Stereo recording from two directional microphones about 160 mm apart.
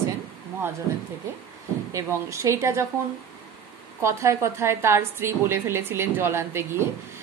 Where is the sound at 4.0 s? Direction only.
20° right (ahead or behind).